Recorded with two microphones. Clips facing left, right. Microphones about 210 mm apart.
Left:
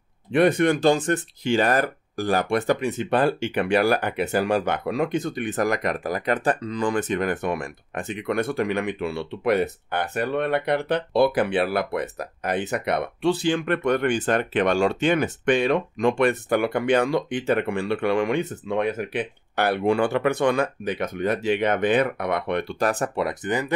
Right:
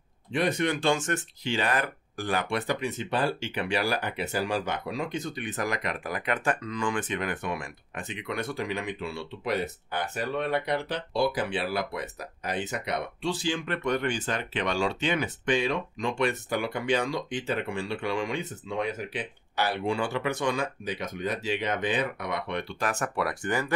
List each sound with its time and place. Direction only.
0.3 s speech: 60° left (ahead or behind); by 1.2 s 35° left (ahead or behind)
1.4 s speech: 45° left (ahead or behind); by 23.7 s 20° left (ahead or behind)